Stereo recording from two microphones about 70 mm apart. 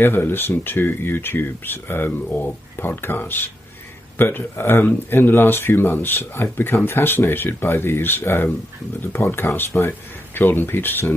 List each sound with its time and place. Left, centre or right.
0.0 s speech: left